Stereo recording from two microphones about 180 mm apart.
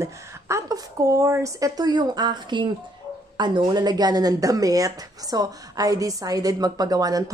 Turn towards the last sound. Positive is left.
turn(degrees=-20)  # may be behind; listen again after turning